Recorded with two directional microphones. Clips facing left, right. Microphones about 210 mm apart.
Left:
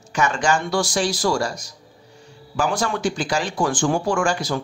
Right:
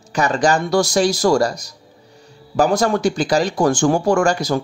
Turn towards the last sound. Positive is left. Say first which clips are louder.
# right 5 dB
turn(degrees=-40)  # may be behind; listen again after turning